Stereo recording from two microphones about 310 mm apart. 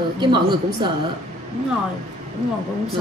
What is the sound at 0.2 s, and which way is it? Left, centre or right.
Speech, centre.